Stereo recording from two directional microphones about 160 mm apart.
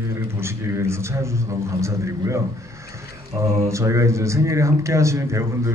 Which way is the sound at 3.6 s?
20° right (ahead or behind).